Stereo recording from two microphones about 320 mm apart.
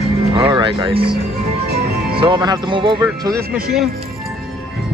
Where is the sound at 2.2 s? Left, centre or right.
Centre.